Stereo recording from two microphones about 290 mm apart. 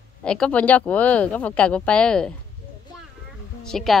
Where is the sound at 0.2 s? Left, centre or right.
Centre.